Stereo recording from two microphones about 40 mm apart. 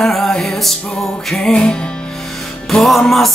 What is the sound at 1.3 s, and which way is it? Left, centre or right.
Music, centre.